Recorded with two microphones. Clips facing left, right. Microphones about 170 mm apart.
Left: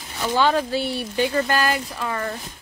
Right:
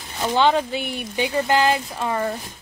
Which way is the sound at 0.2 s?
15° right (ahead or behind).